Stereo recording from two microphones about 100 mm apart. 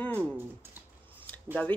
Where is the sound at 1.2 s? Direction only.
15° left (ahead or behind).